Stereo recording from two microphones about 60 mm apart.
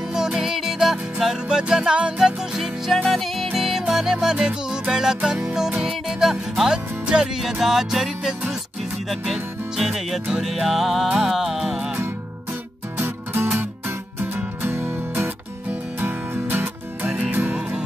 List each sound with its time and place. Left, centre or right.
0.1 s music: centre
13.0 s music: right
16.3 s music: right